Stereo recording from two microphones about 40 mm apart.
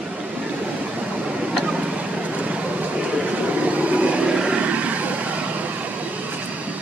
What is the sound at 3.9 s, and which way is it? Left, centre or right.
Vehicle, right.